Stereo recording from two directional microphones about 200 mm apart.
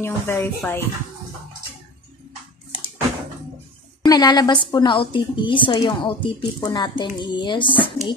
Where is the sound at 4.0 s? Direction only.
20° left (ahead or behind).